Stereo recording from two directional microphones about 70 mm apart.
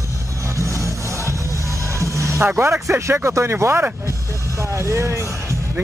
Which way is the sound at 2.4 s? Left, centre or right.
Right.